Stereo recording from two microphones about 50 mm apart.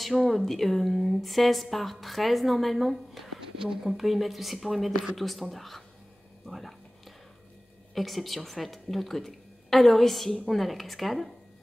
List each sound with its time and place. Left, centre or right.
0.0 s speech: centre
6.4 s a sound: centre
7.9 s speech: centre